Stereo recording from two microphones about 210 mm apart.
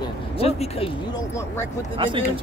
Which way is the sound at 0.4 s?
30° left (ahead or behind).